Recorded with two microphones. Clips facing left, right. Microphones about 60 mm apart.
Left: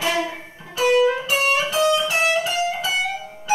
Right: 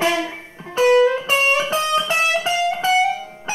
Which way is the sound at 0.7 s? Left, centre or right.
Right.